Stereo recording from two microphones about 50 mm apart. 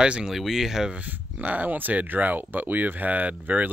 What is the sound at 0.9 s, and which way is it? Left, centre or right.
Speech, right.